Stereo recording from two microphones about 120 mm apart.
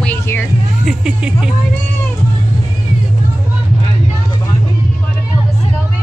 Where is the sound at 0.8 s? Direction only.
5° right (ahead or behind).